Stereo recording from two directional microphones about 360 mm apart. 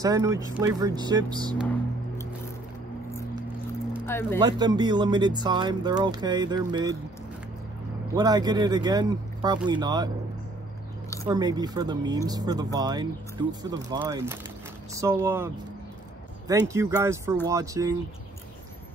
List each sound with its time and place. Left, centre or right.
0.0 s speech: centre
3.9 s vehicle: centre
4.4 s speech: centre
8.1 s speech: centre
11.2 s speech: centre